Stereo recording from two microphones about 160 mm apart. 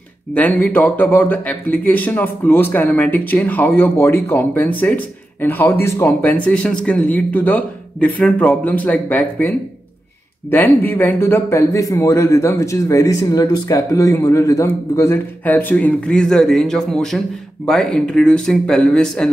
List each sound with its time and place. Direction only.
0.3 s speech: 10° left (ahead or behind)